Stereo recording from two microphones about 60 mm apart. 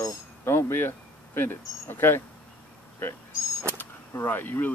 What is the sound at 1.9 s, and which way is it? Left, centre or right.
Speech, left.